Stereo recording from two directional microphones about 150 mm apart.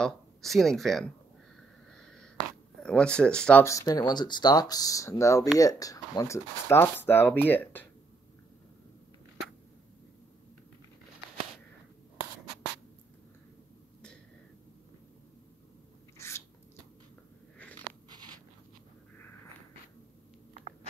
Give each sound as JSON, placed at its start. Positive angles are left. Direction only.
{"t": 0.0, "sound": "speech", "side_deg": 0}
{"t": 2.0, "sound": "a sound", "side_deg": 5}
{"t": 2.8, "sound": "speech", "side_deg": 5}
{"t": 3.6, "sound": "speech", "side_deg": 20}
{"t": 16.2, "sound": "biting", "side_deg": 20}